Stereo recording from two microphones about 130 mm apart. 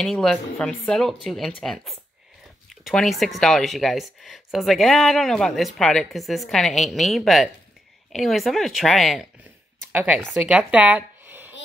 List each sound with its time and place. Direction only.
0.0 s speech: 5° left (ahead or behind)
9.9 s speech: 10° right (ahead or behind)